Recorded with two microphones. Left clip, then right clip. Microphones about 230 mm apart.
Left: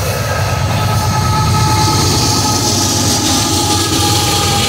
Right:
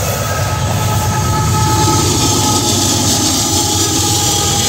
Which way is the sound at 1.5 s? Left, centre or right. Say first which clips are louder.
Right 2 dB; left.